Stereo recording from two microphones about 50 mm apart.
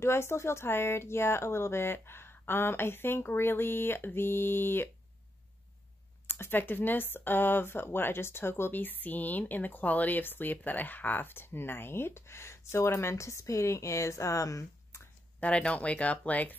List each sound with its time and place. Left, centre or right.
0.0 s speech: left
6.2 s speech: left
8.7 s speech: left
15.4 s speech: left